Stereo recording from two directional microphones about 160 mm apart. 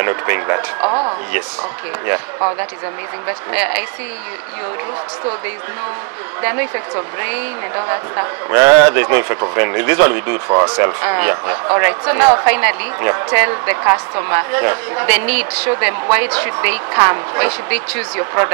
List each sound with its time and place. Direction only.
0.0 s speech: 20° right (ahead or behind)
3.5 s a woman's voice: 10° right (ahead or behind)
6.4 s a woman's voice: 15° right (ahead or behind)